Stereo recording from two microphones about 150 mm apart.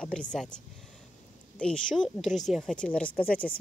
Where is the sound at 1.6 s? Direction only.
5° left (ahead or behind).